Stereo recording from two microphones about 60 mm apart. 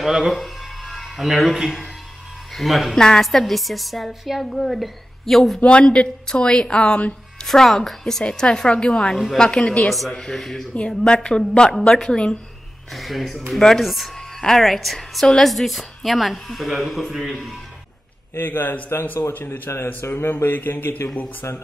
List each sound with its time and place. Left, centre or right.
0.0 s a woman's voice: centre
5.6 s a woman's voice: centre
7.4 s a woman's voice: centre
9.1 s a woman's voice: centre
9.4 s a woman's voice: centre
9.8 s a woman's voice: centre
12.9 s a woman's voice: centre
18.3 s speech: left
20.0 s speech: left